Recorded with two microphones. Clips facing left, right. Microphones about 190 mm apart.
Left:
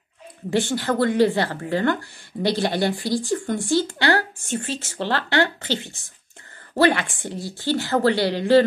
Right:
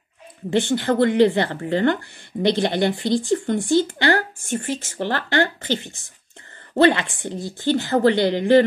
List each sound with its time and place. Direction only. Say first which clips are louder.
0.5 s a woman's voice: right 2 dB; 20° right (ahead or behind)
6.8 s a woman's voice: right 2 dB; 20° right (ahead or behind)